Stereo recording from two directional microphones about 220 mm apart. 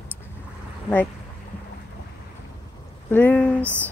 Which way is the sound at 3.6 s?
10° right (ahead or behind).